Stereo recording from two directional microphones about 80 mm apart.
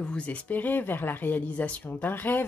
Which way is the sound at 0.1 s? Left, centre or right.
Centre.